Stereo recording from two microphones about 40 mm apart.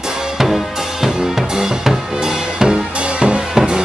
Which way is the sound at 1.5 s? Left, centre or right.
Centre.